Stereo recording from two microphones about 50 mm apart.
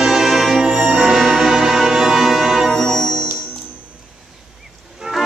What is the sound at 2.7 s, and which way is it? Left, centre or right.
Music, centre.